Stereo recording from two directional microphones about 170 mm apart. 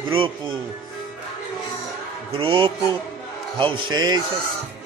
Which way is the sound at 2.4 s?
30° right (ahead or behind).